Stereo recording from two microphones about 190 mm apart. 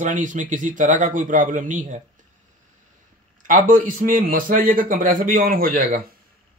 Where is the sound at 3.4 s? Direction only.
45° right (ahead or behind).